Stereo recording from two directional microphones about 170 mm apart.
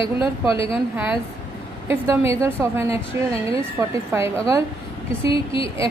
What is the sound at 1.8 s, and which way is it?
Speech, 15° right (ahead or behind).